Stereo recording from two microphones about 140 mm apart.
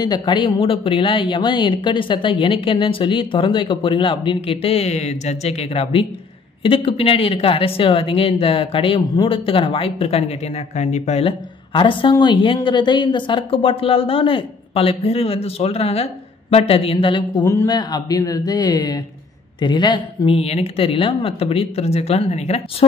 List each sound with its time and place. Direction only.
0.0 s a woman's voice: 30° left (ahead or behind)
10.8 s speech: 55° left (ahead or behind)
11.2 s a woman's voice: 35° left (ahead or behind)
17.5 s speech: 25° left (ahead or behind); by 22.8 s 50° left (ahead or behind)